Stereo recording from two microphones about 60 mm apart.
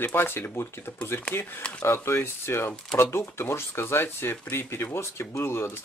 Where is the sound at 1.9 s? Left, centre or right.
Left.